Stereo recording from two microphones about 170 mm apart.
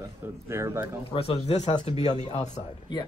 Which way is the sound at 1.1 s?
35° left (ahead or behind).